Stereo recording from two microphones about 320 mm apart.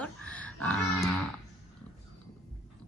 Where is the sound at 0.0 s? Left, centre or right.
Centre.